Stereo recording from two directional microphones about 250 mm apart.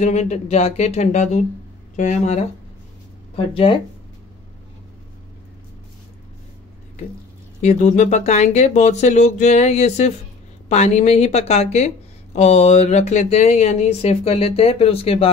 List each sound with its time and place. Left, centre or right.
0.0 s speech: left
7.6 s speech: left